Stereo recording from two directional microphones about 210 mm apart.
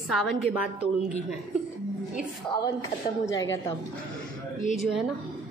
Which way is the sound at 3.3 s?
60° left (ahead or behind).